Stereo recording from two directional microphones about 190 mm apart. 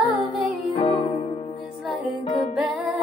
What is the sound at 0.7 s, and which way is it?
Music, 25° left (ahead or behind).